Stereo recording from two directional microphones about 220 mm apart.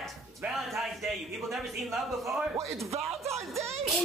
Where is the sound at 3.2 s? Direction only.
30° right (ahead or behind).